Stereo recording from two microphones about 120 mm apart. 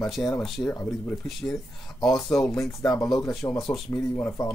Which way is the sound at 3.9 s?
20° left (ahead or behind).